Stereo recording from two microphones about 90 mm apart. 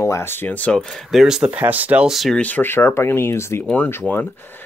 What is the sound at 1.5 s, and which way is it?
Speech, 20° right (ahead or behind).